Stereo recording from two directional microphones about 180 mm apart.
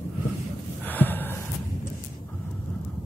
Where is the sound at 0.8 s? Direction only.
10° left (ahead or behind).